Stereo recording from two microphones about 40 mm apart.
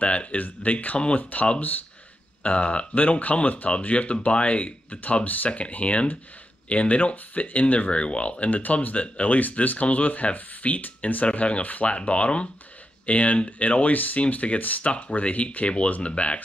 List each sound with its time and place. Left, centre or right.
0.0 s speech: left
0.9 s speech: left
2.4 s speech: left
2.9 s speech: left
5.2 s speech: left
11.2 s speech: left
14.8 s speech: left